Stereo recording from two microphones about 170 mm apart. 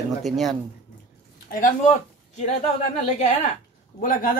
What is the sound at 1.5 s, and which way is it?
Speech, 45° left (ahead or behind).